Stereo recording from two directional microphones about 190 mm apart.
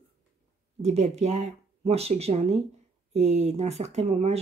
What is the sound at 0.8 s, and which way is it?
Speech, 35° right (ahead or behind).